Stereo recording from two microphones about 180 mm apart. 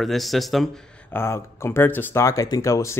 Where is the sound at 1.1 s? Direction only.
15° left (ahead or behind).